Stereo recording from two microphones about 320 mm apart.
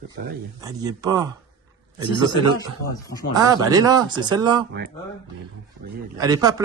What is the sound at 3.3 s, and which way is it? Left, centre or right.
Speech, centre.